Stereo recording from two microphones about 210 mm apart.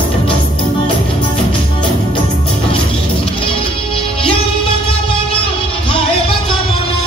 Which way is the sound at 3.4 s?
25° left (ahead or behind).